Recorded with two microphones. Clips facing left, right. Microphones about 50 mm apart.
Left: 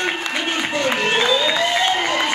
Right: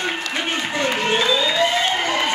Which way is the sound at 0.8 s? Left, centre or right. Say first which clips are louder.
Left 1 dB; left.